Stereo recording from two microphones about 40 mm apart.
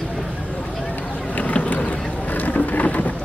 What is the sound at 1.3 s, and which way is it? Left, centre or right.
Boat, left.